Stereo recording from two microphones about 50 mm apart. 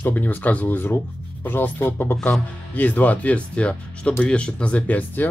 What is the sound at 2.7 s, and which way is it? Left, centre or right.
Speech, left.